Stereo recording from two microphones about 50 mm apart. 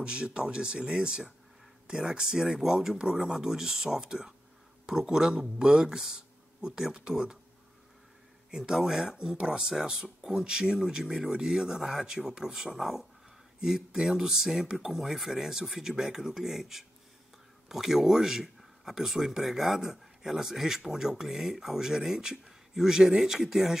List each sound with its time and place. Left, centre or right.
0.0 s speech: centre
8.5 s speech: centre